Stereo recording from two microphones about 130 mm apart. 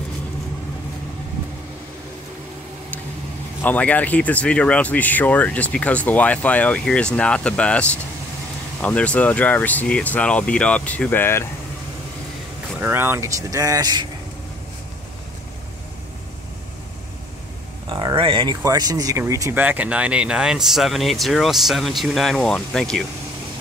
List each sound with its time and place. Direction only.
3.6 s speech: 10° left (ahead or behind)
12.8 s speech: 15° right (ahead or behind)
17.9 s a sound: 40° right (ahead or behind)
18.6 s speech: 30° right (ahead or behind)
19.6 s speech: 10° right (ahead or behind); by 23.0 s 5° left (ahead or behind)